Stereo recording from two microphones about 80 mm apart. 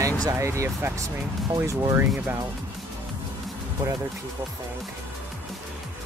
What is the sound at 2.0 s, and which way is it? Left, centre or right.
Speech, right.